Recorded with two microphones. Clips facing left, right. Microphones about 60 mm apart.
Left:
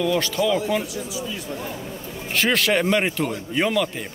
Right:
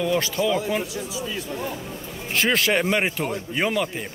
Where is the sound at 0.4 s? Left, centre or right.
Right.